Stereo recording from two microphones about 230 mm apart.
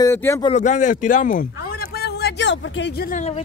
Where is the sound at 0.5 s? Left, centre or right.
Left.